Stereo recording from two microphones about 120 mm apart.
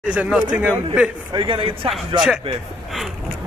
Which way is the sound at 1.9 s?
5° right (ahead or behind).